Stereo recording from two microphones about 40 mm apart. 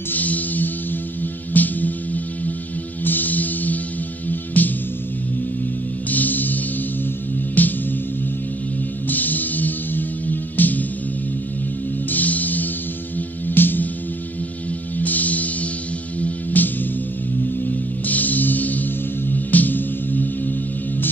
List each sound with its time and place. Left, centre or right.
0.1 s music: left
6.0 s music: left
9.1 s music: left
12.1 s music: left
15.0 s music: left
17.6 s music: left